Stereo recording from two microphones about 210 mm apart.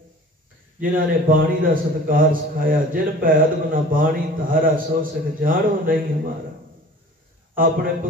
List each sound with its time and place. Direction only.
0.7 s a man's voice: 40° right (ahead or behind)
7.5 s a man's voice: 40° right (ahead or behind)